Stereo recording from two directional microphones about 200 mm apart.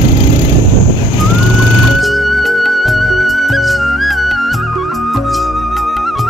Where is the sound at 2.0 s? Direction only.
Centre (ahead or behind).